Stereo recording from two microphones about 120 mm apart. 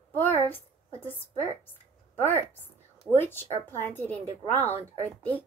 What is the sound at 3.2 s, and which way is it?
A woman's voice, 15° left (ahead or behind).